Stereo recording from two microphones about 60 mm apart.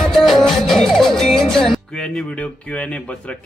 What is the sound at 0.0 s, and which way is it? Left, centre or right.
Music, centre.